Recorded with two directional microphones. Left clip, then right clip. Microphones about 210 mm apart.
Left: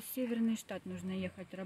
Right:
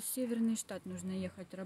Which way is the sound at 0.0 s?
Centre (ahead or behind).